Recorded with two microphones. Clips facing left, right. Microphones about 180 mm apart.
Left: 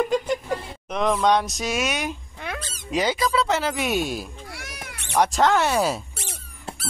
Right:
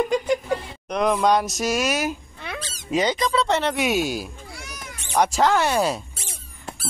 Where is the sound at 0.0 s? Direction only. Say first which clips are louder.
Right 1 dB; centre (ahead or behind).